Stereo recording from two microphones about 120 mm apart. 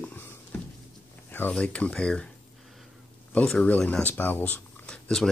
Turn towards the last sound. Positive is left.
turn(degrees=5)  # may be behind; listen again after turning